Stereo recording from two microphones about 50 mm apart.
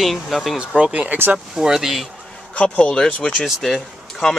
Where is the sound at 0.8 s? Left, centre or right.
Right.